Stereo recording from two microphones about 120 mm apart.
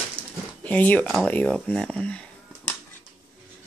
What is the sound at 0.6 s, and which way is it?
Speech, 15° left (ahead or behind).